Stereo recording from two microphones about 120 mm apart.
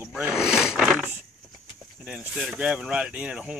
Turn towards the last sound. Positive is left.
turn(degrees=-5)  # may be behind; listen again after turning